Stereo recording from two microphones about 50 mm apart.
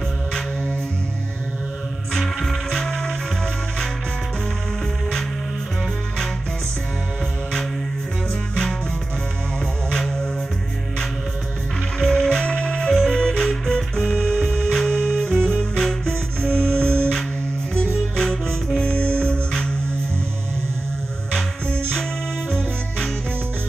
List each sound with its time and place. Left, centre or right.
2.1 s music: centre
9.8 s music: centre
12.0 s music: centre
21.6 s music: centre